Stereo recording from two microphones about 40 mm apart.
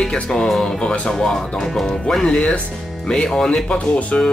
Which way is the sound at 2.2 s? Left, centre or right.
Left.